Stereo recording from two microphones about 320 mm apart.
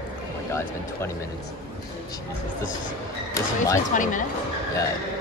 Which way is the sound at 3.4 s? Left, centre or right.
Centre.